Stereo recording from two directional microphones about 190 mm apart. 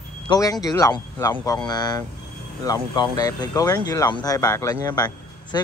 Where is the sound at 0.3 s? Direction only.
20° left (ahead or behind).